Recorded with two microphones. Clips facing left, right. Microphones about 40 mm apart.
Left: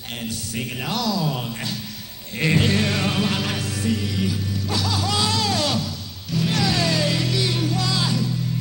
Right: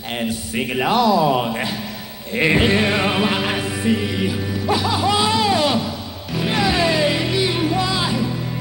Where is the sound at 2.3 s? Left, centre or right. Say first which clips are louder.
Right 4 dB; right.